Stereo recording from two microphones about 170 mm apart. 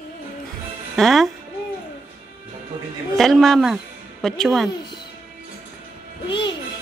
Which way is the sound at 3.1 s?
Centre (ahead or behind).